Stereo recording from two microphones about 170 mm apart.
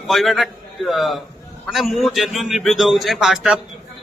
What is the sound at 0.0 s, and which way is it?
A man's voice, centre (ahead or behind).